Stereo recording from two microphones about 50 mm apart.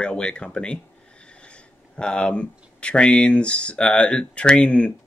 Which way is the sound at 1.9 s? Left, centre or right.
Centre.